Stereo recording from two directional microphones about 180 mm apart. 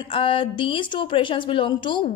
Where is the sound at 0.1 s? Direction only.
30° left (ahead or behind).